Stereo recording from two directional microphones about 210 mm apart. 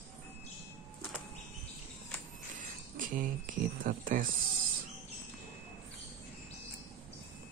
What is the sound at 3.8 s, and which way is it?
Speech, 40° right (ahead or behind).